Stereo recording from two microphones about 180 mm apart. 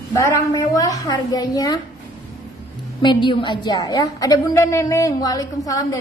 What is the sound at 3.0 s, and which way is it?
A woman's voice, 25° left (ahead or behind).